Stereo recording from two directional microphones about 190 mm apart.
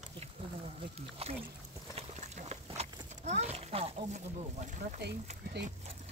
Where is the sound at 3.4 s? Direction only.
35° right (ahead or behind).